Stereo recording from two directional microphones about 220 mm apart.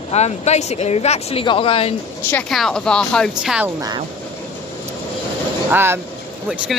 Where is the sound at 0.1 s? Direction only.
30° left (ahead or behind).